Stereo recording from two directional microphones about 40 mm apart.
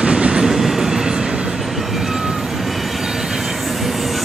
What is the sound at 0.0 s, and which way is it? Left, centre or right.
Train, right.